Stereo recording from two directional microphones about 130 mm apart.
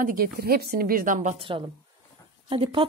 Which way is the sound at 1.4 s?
40° right (ahead or behind).